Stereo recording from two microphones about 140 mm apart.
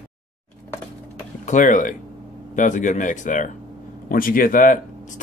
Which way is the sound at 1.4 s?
65° left (ahead or behind).